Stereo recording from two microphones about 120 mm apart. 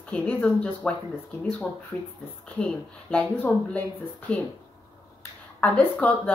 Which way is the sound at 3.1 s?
15° left (ahead or behind).